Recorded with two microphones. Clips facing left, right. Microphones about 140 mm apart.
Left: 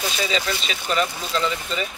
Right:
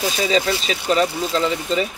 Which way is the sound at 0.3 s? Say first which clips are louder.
Right 6 dB; 35° right (ahead or behind).